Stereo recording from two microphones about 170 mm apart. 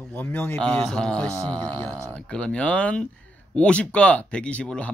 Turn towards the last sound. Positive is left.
turn(degrees=5)  # may be behind; listen again after turning